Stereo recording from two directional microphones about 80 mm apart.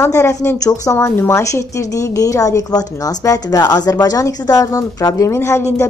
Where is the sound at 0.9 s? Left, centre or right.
Left.